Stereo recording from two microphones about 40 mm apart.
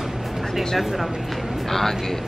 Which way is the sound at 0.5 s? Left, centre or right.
Centre.